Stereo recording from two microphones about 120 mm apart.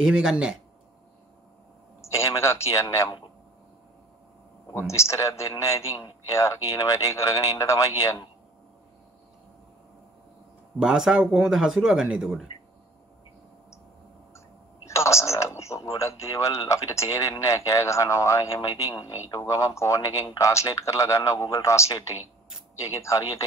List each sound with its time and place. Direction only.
0.0 s speech: 5° right (ahead or behind)
2.0 s speech: 25° left (ahead or behind)
4.7 s speech: 25° left (ahead or behind)
5.9 s a man's voice: 40° left (ahead or behind)
6.3 s a man's voice: 30° left (ahead or behind)
10.8 s speech: 5° right (ahead or behind)
14.9 s speech: 25° left (ahead or behind)